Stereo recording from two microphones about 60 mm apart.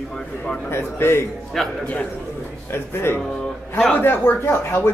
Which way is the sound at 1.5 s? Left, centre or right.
Centre.